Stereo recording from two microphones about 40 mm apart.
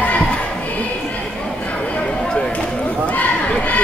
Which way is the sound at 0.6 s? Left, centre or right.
Left.